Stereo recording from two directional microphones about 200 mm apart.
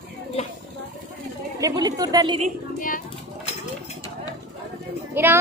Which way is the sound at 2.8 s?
40° left (ahead or behind).